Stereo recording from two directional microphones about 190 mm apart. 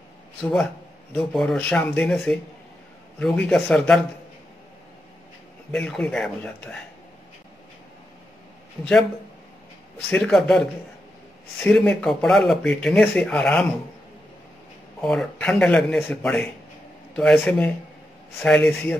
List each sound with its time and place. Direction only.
0.4 s speech: centre (ahead or behind)
5.7 s speech: 5° left (ahead or behind)
9.9 s speech: 5° left (ahead or behind)
15.0 s speech: 5° left (ahead or behind)